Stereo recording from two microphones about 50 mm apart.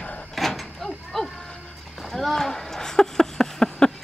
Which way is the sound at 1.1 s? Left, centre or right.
Centre.